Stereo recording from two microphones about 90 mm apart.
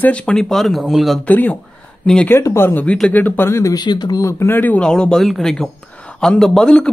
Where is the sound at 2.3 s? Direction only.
30° left (ahead or behind).